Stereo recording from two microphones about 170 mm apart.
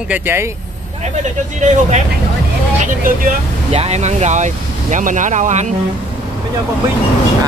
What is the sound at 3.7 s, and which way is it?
Speech, 40° right (ahead or behind).